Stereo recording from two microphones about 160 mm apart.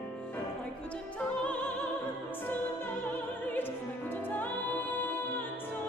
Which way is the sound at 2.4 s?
10° left (ahead or behind).